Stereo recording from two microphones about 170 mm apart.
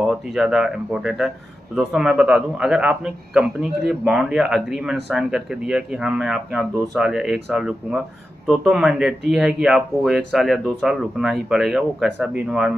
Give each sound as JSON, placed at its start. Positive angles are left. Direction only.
{"t": 0.0, "sound": "a man's voice", "side_deg": -5}